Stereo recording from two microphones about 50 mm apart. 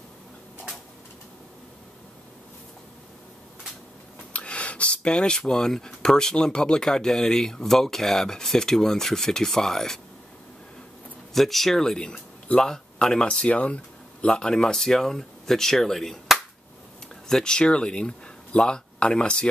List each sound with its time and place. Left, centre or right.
4.3 s speech: left; by 9.9 s centre
11.3 s speech: centre